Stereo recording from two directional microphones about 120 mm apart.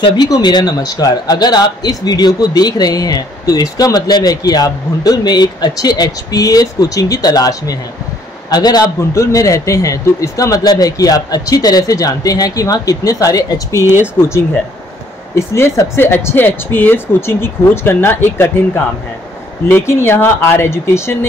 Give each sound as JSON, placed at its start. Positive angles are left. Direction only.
{"t": 0.0, "sound": "a man's voice", "side_deg": 40}
{"t": 15.3, "sound": "a man's voice", "side_deg": 25}
{"t": 19.7, "sound": "a man's voice", "side_deg": 20}